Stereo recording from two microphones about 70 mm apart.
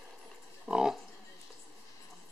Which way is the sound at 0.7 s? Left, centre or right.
Centre.